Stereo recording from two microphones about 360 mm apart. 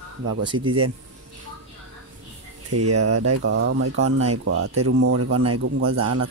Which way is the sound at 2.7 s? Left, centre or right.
Right.